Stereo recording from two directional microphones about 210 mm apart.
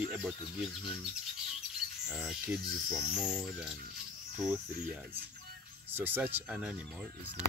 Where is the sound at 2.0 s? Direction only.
5° right (ahead or behind).